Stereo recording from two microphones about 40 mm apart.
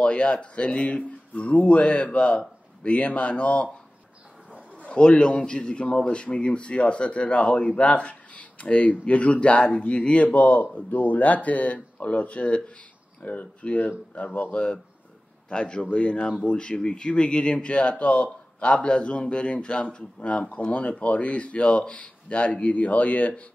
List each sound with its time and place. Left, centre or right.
0.0 s speech: left
4.9 s speech: left